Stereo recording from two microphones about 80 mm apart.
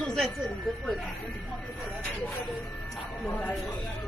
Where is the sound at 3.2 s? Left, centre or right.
Left.